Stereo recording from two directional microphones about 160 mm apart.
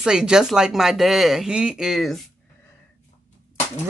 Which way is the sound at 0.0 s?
5° right (ahead or behind).